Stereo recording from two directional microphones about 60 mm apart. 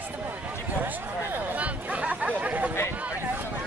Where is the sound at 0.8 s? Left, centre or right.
Right.